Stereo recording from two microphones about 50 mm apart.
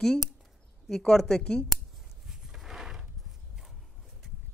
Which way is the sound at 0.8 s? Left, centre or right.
Centre.